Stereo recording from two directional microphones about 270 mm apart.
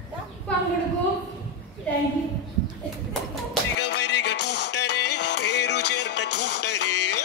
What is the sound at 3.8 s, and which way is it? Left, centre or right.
Music, left.